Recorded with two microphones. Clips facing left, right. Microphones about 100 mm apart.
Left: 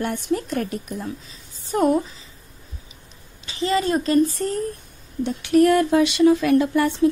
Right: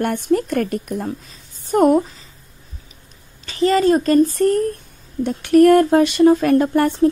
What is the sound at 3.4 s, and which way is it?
Speech, 50° right (ahead or behind).